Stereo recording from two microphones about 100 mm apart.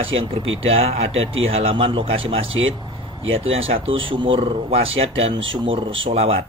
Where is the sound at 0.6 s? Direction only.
90° right.